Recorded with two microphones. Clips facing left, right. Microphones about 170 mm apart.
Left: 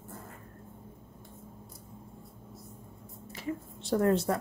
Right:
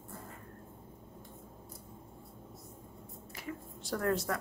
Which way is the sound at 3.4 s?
25° left (ahead or behind).